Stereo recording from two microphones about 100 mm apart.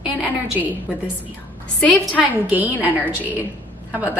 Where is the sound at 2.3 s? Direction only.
15° right (ahead or behind).